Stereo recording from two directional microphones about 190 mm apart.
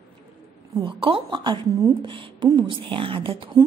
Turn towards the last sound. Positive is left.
turn(degrees=-25)  # may be behind; listen again after turning